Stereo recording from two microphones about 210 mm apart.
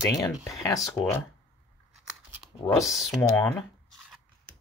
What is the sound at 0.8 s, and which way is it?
Speech, 5° left (ahead or behind).